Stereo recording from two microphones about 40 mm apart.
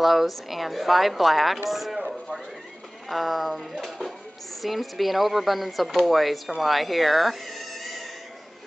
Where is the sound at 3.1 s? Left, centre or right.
Centre.